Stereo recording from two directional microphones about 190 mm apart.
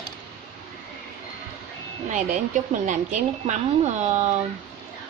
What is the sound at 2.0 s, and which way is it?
A woman's voice, 40° right (ahead or behind).